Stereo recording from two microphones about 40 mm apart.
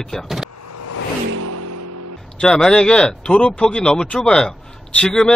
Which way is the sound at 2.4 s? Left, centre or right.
Centre.